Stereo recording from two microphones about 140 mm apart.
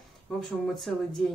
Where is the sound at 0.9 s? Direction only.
5° left (ahead or behind).